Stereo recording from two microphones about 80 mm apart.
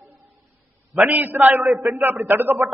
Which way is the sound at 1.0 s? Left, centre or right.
Right.